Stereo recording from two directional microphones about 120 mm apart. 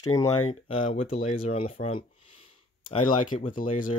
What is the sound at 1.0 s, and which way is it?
Speech, 75° left (ahead or behind).